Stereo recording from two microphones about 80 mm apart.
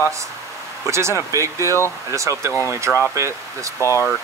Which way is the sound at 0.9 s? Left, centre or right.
Right.